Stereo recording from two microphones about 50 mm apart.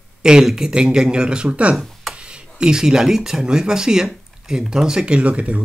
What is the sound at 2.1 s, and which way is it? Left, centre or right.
Speech, centre.